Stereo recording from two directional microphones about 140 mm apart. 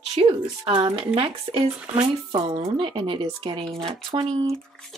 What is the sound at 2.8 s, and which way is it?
Speech, 35° right (ahead or behind).